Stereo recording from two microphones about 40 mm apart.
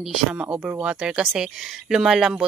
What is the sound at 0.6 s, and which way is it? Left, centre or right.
Speech, right.